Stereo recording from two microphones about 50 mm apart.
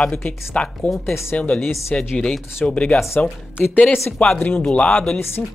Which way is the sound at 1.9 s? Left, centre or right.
Centre.